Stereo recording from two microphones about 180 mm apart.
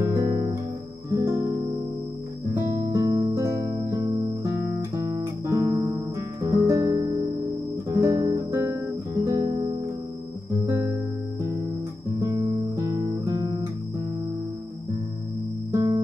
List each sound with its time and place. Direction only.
0.0 s music: 20° right (ahead or behind)
2.5 s music: 15° right (ahead or behind)
10.7 s music: 15° right (ahead or behind)
12.2 s music: 20° right (ahead or behind)
15.7 s music: 15° right (ahead or behind)